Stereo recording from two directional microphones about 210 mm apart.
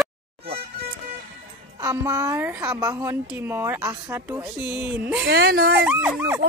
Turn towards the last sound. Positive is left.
turn(degrees=-5)  # may be behind; listen again after turning